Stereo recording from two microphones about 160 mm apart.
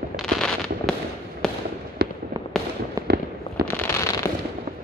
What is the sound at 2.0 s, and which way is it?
Fireworks, 75° right (ahead or behind).